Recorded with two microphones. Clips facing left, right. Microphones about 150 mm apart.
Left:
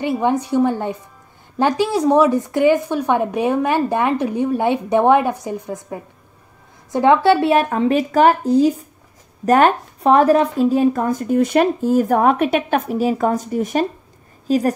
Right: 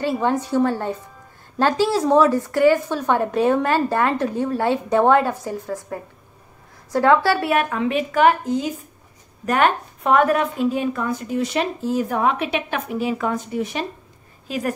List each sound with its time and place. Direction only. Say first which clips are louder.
0.0 s a woman's voice: left 2 dB; 15° left (ahead or behind); by 14.6 s 40° left (ahead or behind)